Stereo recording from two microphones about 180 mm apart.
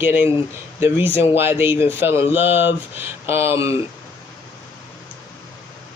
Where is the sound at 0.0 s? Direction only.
10° right (ahead or behind).